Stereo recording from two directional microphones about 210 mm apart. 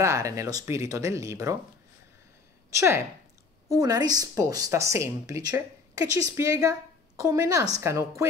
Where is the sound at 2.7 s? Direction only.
15° right (ahead or behind).